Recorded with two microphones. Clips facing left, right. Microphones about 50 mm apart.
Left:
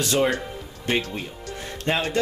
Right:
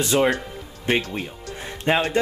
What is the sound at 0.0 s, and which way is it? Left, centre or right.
Speech, centre.